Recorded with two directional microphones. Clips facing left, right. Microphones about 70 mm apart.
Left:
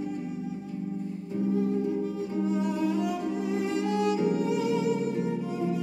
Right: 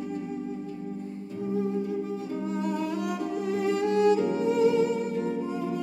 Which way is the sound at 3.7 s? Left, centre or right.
Right.